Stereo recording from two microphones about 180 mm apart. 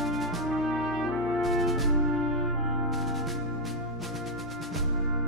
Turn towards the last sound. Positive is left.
turn(degrees=0)  # may be behind; listen again after turning